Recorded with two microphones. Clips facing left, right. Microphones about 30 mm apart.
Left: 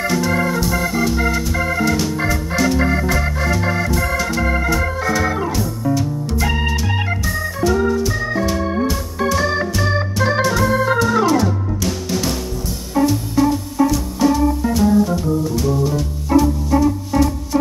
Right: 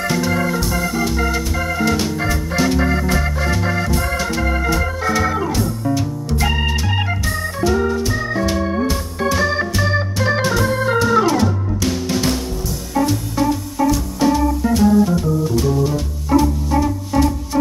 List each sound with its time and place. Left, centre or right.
0.3 s organ: centre
2.5 s organ: centre
6.4 s organ: centre
9.8 s organ: centre
11.0 s music: centre
13.0 s music: centre
16.3 s music: centre